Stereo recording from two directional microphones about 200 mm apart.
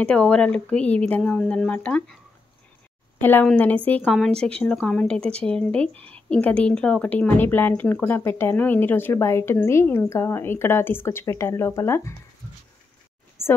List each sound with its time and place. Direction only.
0.0 s speech: 5° left (ahead or behind)
3.2 s speech: 10° left (ahead or behind)
13.4 s a sound: 10° left (ahead or behind)